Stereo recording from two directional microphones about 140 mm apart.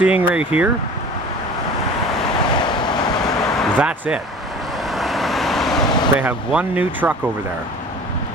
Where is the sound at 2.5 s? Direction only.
30° left (ahead or behind).